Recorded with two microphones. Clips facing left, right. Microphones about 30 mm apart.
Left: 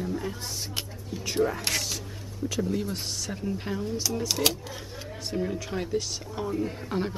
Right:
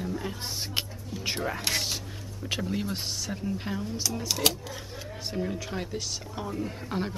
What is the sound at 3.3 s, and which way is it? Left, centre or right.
Speech, centre.